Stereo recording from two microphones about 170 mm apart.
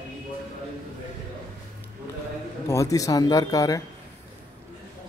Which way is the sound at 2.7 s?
20° left (ahead or behind).